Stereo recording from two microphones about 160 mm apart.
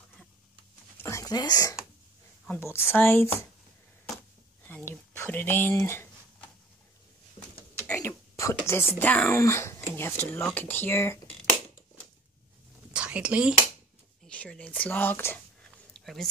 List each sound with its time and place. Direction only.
1.0 s speech: 20° left (ahead or behind)
4.6 s speech: 15° left (ahead or behind)
8.1 s speech: 20° left (ahead or behind)
12.9 s speech: 5° right (ahead or behind)
14.2 s speech: 5° left (ahead or behind)
15.9 s a sound: centre (ahead or behind)